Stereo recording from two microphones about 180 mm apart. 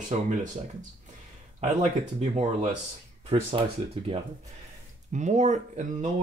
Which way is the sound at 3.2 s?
30° right (ahead or behind).